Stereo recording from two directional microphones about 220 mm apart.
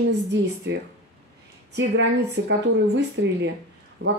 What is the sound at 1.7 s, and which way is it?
Speech, 55° right (ahead or behind).